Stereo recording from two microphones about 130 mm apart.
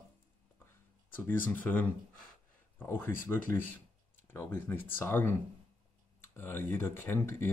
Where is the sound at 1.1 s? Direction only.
15° left (ahead or behind).